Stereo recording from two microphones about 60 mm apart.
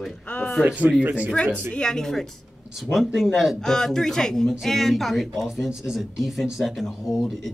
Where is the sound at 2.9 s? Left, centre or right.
Centre.